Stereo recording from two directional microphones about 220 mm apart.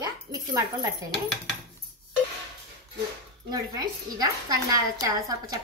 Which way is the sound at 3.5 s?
15° right (ahead or behind).